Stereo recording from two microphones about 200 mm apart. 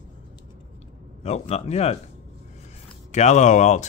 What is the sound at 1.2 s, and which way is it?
Speech, 30° left (ahead or behind).